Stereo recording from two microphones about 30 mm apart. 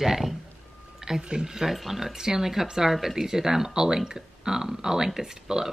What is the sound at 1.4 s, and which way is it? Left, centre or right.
Speech, centre.